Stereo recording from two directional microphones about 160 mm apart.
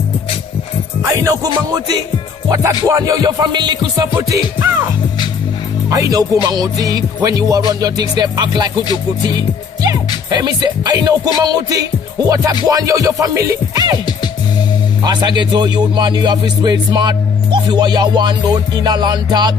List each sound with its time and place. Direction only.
1.2 s music: 20° right (ahead or behind)
5.9 s music: 20° right (ahead or behind)
9.8 s music: 25° right (ahead or behind)
15.0 s music: 25° right (ahead or behind)